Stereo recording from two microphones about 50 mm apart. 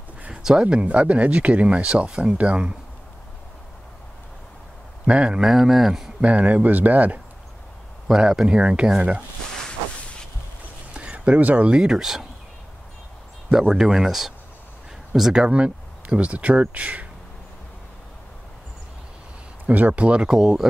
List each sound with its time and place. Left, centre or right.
0.3 s a sound: centre
0.7 s speech: right
5.0 s speech: right
5.4 s speech: centre
6.2 s speech: right
8.1 s speech: centre
10.9 s a sound: right
11.7 s speech: centre
13.5 s speech: centre
15.4 s speech: right
19.6 s speech: right
20.2 s speech: centre